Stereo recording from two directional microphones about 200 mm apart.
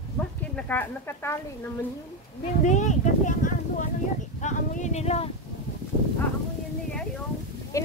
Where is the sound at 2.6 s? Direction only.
35° left (ahead or behind).